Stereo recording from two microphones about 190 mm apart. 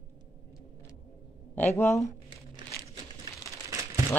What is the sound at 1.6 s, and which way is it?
Speech, 10° left (ahead or behind).